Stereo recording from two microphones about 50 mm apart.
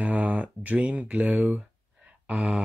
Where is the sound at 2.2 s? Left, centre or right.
Right.